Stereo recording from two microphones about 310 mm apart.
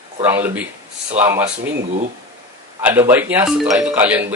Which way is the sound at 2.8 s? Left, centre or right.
Centre.